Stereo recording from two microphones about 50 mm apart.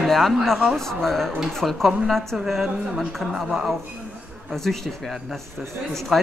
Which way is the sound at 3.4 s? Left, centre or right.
Centre.